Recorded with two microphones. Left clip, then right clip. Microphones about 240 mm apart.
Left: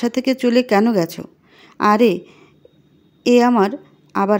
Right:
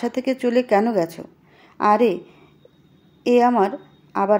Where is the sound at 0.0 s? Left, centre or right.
Left.